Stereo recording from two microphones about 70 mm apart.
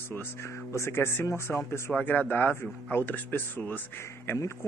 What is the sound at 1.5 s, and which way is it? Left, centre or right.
Speech, left.